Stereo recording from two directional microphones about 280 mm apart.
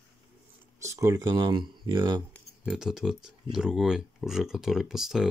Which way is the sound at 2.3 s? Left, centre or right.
Centre.